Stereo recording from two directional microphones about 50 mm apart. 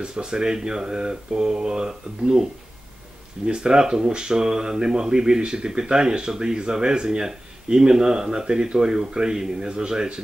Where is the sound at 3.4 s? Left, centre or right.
Centre.